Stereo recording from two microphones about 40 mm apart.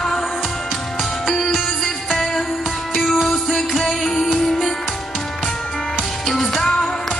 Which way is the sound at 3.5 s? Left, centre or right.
Centre.